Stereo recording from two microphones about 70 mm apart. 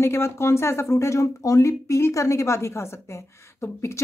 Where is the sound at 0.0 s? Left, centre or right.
Left.